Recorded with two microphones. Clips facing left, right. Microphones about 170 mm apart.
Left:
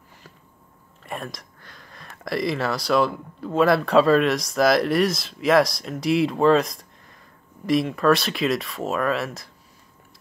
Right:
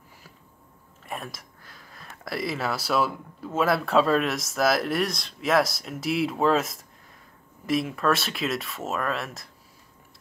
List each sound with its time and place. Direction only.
1.0 s speech: 5° right (ahead or behind)